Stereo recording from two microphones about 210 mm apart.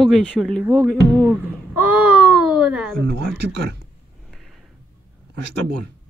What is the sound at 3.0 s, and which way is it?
Speech, 55° right (ahead or behind).